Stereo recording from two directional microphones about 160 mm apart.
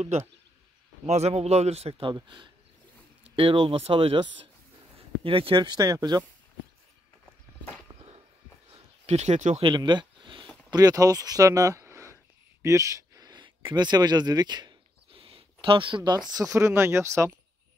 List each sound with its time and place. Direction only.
1.0 s speech: 45° right (ahead or behind); by 6.2 s 25° right (ahead or behind)
7.9 s a sound: 30° right (ahead or behind)
9.0 s speech: 45° right (ahead or behind)
9.6 s speech: 30° right (ahead or behind)
12.6 s a sound: 20° right (ahead or behind)
16.3 s speech: 20° right (ahead or behind)